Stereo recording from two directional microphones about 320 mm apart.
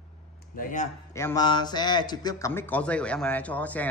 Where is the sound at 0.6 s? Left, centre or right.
Left.